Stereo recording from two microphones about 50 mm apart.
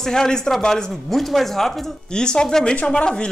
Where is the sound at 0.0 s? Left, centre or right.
Centre.